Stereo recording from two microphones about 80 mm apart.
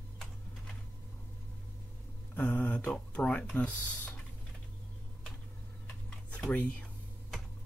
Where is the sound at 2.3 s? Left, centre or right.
Centre.